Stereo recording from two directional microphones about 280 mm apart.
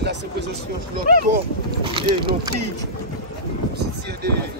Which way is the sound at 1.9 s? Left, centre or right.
Centre.